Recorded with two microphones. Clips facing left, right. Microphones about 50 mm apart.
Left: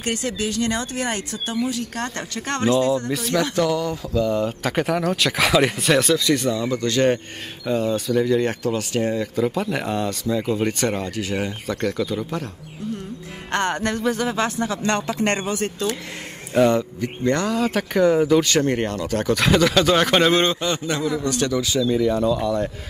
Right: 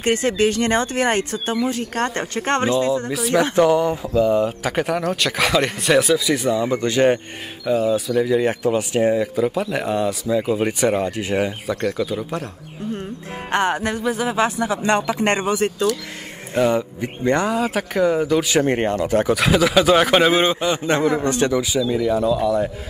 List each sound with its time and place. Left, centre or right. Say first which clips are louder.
0.0 s speech: right 7 dB; right
2.7 s speech: even; centre
3.4 s speech: right 5 dB; right
7.6 s speech: right 3 dB; centre; by 11.5 s right
11.6 s speech: right 2 dB; centre
13.5 s speech: right 2 dB; centre
16.5 s speech: left 1 dB; centre
17.0 s speech: right 2 dB; centre
18.5 s speech: right 2 dB; centre
19.3 s speech: left 1 dB; centre
20.8 s speech: right 5 dB; right; by 22.7 s centre